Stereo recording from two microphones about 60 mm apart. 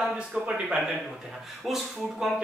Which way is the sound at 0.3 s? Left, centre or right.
Centre.